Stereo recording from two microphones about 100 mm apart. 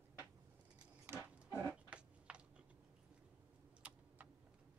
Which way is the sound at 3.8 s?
10° right (ahead or behind).